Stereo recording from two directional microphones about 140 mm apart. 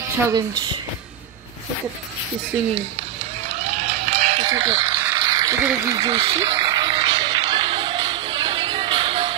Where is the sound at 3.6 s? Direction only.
50° right (ahead or behind).